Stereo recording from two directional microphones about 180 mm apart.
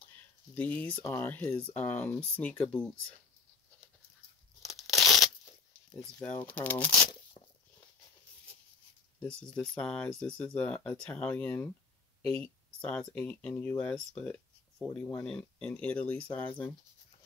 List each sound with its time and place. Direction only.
0.6 s speech: 10° left (ahead or behind)
4.6 s crumpling: centre (ahead or behind)
6.4 s speech: 10° left (ahead or behind)
6.9 s speech: 25° left (ahead or behind)
9.2 s speech: 5° left (ahead or behind)
12.2 s a sound: 5° left (ahead or behind)
13.1 s speech: 10° left (ahead or behind)